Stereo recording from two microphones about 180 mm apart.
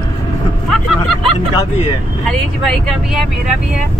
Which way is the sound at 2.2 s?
5° left (ahead or behind).